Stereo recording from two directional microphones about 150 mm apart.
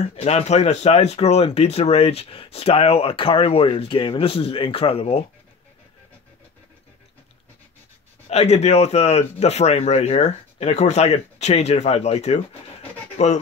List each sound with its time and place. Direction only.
0.0 s speech: 45° left (ahead or behind)
8.3 s speech: 45° left (ahead or behind)